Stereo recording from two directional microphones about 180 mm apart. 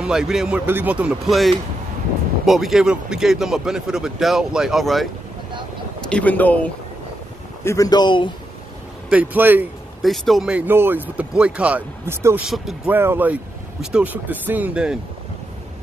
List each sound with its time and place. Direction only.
0.0 s speech: centre (ahead or behind)
2.4 s speech: centre (ahead or behind); by 8.3 s 25° left (ahead or behind)
9.1 s speech: 10° right (ahead or behind)
10.0 s speech: centre (ahead or behind)
12.4 s speech: centre (ahead or behind)